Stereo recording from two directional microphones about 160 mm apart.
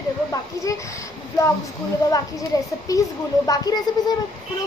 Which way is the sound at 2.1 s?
20° left (ahead or behind).